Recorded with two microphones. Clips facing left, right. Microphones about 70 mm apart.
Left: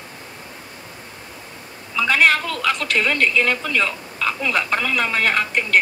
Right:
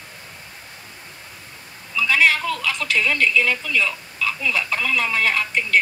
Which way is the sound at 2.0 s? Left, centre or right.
Left.